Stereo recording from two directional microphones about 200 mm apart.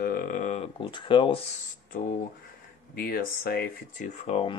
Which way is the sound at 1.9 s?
45° left (ahead or behind).